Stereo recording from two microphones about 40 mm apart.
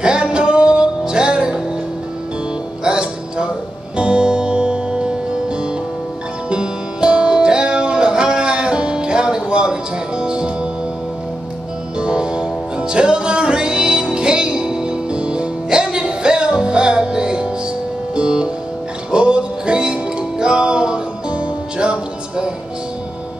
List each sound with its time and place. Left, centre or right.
0.0 s music: right
2.8 s music: right
12.0 s music: right